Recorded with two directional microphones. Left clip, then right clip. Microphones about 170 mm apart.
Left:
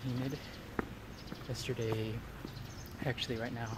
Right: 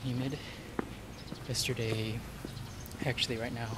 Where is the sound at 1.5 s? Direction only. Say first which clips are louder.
Right 3 dB; centre (ahead or behind).